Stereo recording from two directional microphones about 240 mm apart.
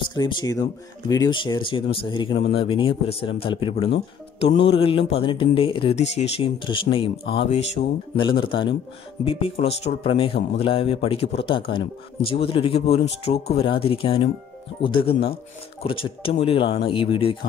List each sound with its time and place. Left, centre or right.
0.1 s speech: centre